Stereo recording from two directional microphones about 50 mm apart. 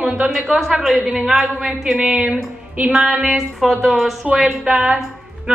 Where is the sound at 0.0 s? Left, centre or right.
Right.